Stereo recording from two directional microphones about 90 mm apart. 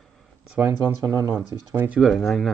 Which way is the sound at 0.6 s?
25° right (ahead or behind).